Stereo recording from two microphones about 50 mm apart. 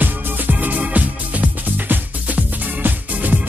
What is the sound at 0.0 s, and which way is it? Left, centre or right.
Music, right.